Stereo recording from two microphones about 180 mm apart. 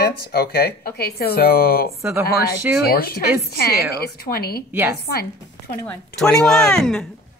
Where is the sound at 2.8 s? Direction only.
55° left (ahead or behind).